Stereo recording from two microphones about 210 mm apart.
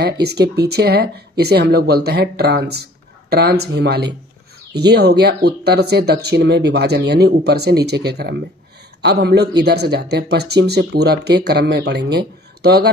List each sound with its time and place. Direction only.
0.0 s speech: 50° right (ahead or behind)